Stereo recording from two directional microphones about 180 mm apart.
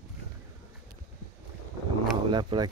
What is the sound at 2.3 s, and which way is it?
Speech, 25° right (ahead or behind).